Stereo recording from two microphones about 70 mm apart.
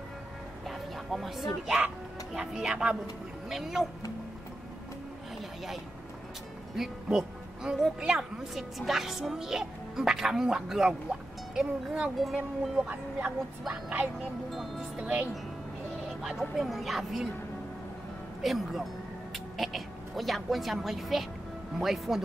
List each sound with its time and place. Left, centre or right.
0.7 s a woman's voice: centre
6.8 s a woman's voice: centre
12.8 s speech: right
15.0 s speech: centre
16.2 s a woman's voice: centre
18.4 s a woman's voice: centre